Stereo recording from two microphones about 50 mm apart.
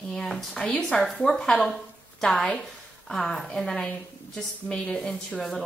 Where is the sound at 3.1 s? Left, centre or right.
Centre.